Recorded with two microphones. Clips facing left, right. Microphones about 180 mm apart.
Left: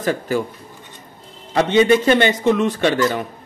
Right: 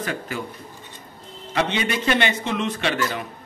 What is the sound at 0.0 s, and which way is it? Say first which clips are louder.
Speech: left 9 dB; 40° left (ahead or behind).